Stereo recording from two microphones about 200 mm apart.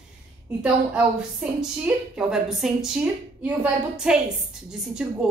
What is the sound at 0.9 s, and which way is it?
A woman's voice, 5° right (ahead or behind).